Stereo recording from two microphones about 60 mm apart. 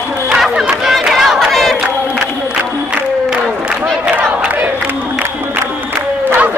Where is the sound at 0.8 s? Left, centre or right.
Centre.